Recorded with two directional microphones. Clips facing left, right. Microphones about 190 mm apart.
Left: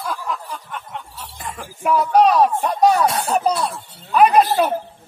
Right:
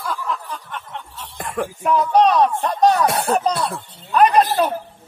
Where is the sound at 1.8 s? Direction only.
5° left (ahead or behind).